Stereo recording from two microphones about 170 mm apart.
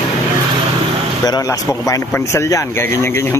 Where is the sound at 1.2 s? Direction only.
20° left (ahead or behind).